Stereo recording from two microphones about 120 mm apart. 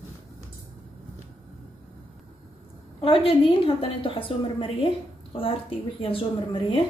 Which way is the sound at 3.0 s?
50° left (ahead or behind).